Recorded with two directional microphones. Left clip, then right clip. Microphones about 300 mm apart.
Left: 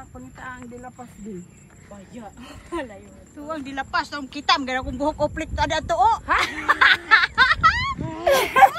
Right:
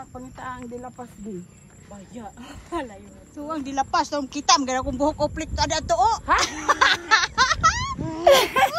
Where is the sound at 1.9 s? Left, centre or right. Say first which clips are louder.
Right 1 dB; right.